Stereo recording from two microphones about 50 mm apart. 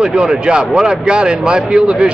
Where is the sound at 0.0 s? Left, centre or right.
Centre.